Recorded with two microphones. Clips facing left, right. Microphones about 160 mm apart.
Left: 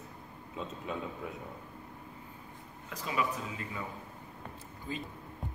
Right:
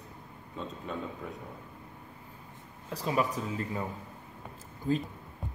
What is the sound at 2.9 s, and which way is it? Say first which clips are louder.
Speech: right 4 dB; 35° right (ahead or behind).